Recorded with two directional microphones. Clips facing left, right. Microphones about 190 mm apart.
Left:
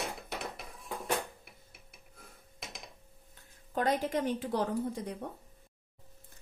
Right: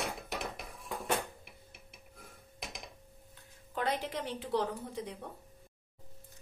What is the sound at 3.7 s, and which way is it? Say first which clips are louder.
A woman's voice: left 4 dB; 45° left (ahead or behind).